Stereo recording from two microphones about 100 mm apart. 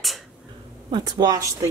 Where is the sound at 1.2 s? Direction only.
35° right (ahead or behind).